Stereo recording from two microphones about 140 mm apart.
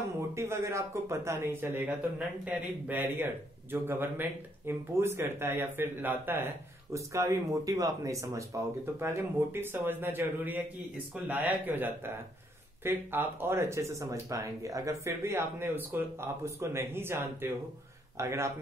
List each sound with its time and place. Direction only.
0.3 s a man's voice: 20° right (ahead or behind)